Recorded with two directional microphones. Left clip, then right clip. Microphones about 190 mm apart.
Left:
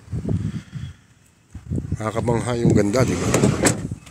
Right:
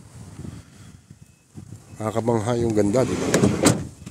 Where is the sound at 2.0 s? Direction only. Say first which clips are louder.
Even; 15° right (ahead or behind).